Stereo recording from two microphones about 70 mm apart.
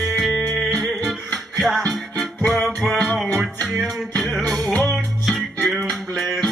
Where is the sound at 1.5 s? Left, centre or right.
Centre.